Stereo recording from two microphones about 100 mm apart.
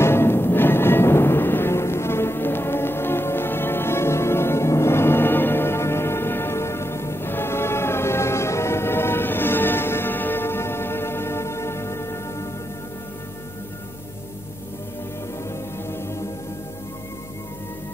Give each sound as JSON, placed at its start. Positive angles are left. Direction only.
{"t": 0.0, "sound": "music", "side_deg": 25}
{"t": 15.9, "sound": "music", "side_deg": 25}